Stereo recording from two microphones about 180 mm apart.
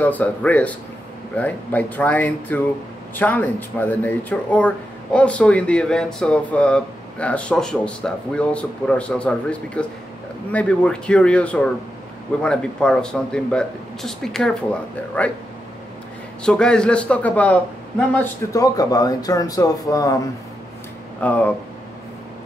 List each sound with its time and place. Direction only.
0.0 s speech: 10° left (ahead or behind)
16.4 s speech: 5° left (ahead or behind); by 20.2 s 20° left (ahead or behind)
21.2 s speech: 10° left (ahead or behind)